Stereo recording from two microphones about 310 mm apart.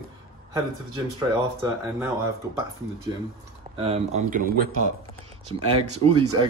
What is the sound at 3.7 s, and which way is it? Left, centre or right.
Speech, centre.